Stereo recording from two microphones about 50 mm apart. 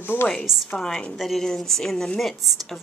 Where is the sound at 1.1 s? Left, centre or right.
Centre.